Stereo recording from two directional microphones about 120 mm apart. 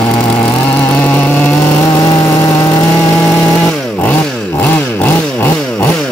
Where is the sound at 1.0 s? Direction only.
10° left (ahead or behind).